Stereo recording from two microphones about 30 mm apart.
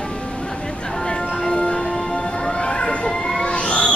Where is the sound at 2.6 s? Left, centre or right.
Left.